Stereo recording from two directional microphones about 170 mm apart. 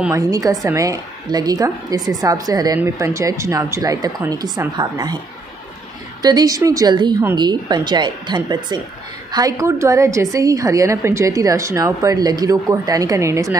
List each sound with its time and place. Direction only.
0.0 s a woman's voice: 20° right (ahead or behind)
6.2 s a woman's voice: 20° right (ahead or behind)